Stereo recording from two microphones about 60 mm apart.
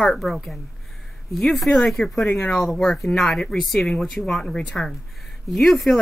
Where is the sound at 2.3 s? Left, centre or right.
Left.